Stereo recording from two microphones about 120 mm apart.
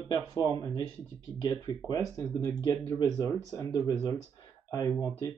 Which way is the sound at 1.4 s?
30° left (ahead or behind).